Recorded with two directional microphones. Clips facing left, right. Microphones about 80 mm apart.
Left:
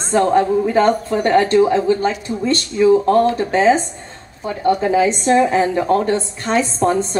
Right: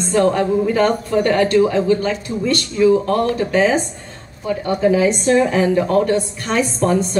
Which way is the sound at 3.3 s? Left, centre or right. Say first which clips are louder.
Left 2 dB; left.